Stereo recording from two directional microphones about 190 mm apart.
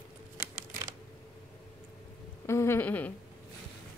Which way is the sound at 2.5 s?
15° left (ahead or behind).